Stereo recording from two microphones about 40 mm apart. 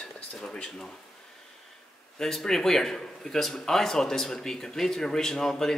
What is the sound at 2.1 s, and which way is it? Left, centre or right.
Speech, centre.